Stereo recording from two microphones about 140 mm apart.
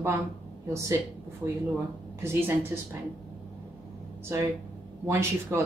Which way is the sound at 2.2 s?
15° right (ahead or behind).